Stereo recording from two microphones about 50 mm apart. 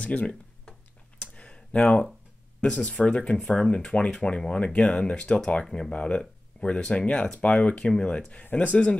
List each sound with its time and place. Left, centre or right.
0.0 s speech: left
1.2 s a sound: left
2.6 s speech: left